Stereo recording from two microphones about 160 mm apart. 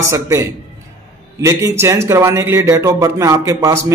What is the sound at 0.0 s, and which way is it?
A man's voice, 20° right (ahead or behind).